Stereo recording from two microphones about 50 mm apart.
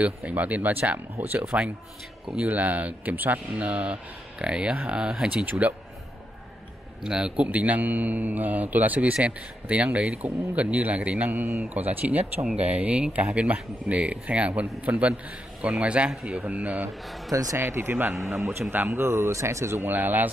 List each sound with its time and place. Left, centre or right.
0.0 s a man's voice: right
2.4 s a man's voice: right
3.6 s speech: right
5.3 s a man's voice: right
7.0 s a man's voice: centre
7.3 s a man's voice: right
16.4 s speech: right
17.6 s speech: right
19.9 s a man's voice: right